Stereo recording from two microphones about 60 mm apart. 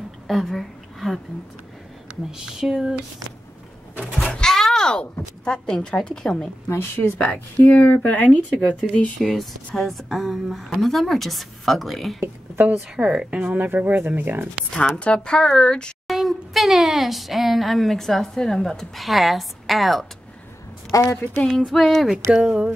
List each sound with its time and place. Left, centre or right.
0.3 s a woman's voice: centre
2.3 s a sound: centre
3.9 s goat: centre
4.3 s speech: centre
6.7 s speech: left
7.6 s speech: left
9.2 s speech: centre
12.9 s a sound: centre
13.3 s speech: right
15.0 s speech: centre
16.1 s speech: centre
20.9 s a woman's voice: left
21.5 s speech: centre
22.3 s a sound: centre